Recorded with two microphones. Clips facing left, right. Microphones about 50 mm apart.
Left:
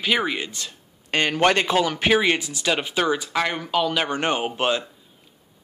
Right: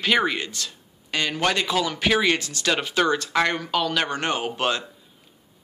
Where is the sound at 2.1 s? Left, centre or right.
Centre.